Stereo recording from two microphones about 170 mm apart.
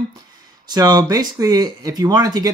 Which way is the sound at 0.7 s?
25° right (ahead or behind).